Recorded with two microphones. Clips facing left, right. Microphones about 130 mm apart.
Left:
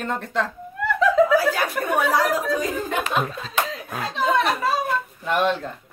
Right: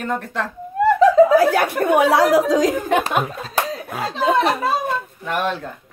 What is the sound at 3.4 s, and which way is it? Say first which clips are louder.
Speech: right 3 dB; 40° right (ahead or behind).